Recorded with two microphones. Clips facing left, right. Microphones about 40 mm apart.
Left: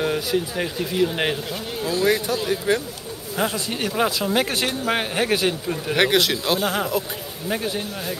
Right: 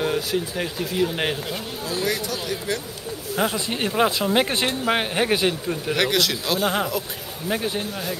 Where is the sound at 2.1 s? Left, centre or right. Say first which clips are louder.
Left 7 dB; centre.